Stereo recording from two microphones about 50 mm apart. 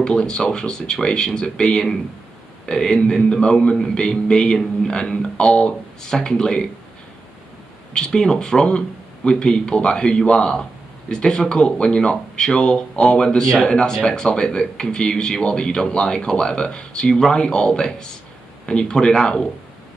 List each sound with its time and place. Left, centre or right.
0.0 s speech: centre
7.9 s speech: centre